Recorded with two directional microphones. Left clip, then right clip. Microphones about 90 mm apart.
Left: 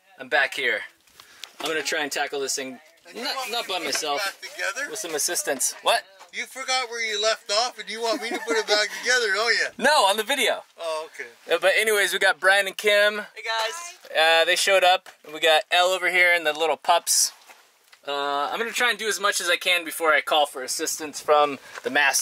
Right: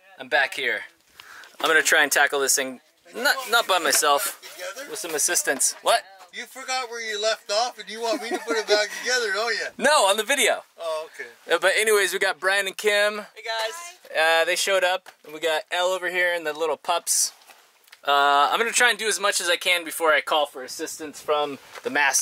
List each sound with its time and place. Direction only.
0.2 s a man's voice: centre (ahead or behind)
1.7 s speech: 35° right (ahead or behind)
4.9 s a man's voice: 5° right (ahead or behind)
5.6 s a man's voice: centre (ahead or behind)
18.0 s a man's voice: 25° right (ahead or behind); by 20.6 s centre (ahead or behind)
21.8 s a man's voice: centre (ahead or behind)